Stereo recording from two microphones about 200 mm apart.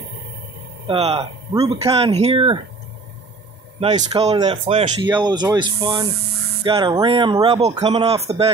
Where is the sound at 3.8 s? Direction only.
30° right (ahead or behind).